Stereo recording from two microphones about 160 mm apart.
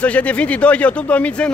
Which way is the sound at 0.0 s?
10° left (ahead or behind).